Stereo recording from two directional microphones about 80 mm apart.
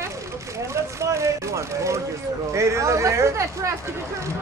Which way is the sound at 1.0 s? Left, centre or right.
Right.